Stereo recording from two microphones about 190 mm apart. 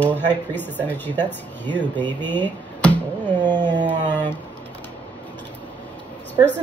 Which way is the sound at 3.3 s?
20° right (ahead or behind).